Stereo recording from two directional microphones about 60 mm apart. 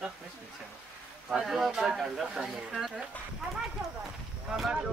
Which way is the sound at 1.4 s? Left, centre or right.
Centre.